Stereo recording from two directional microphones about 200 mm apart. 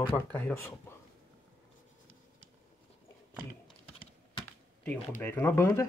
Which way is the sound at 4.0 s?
30° left (ahead or behind).